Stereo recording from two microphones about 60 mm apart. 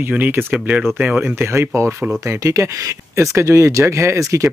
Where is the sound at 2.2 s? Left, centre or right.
Right.